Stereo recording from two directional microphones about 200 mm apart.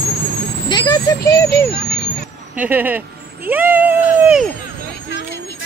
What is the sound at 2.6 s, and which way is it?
Speech, 10° right (ahead or behind).